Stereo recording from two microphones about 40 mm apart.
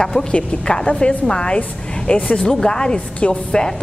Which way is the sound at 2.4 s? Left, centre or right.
Centre.